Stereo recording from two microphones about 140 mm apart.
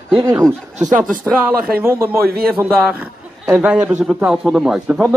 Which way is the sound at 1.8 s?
15° right (ahead or behind).